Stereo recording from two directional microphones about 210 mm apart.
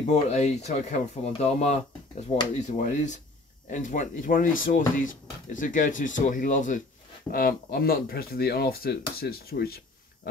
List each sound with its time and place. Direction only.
0.1 s speech: 30° left (ahead or behind); by 9.8 s 45° left (ahead or behind)